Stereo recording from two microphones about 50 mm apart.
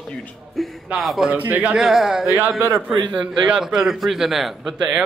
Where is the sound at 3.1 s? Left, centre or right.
Centre.